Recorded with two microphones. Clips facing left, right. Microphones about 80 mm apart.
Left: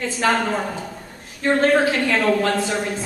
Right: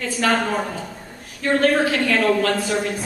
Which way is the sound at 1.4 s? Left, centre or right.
Left.